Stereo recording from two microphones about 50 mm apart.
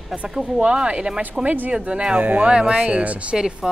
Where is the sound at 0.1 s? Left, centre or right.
Right.